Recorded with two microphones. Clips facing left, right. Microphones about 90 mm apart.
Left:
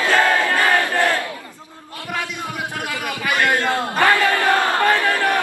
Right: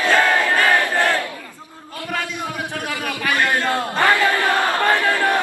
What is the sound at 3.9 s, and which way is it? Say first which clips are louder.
Battle cry: left 1 dB; 20° right (ahead or behind).